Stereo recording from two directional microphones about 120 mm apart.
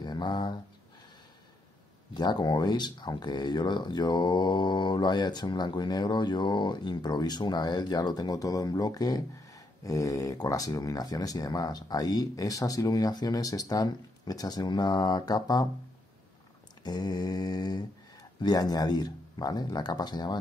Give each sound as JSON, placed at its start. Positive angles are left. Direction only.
{"t": 0.0, "sound": "a sound", "side_deg": 35}
{"t": 2.1, "sound": "speech", "side_deg": 35}
{"t": 16.8, "sound": "speech", "side_deg": 35}